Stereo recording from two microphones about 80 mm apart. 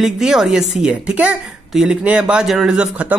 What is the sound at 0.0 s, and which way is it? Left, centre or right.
A woman's voice, centre.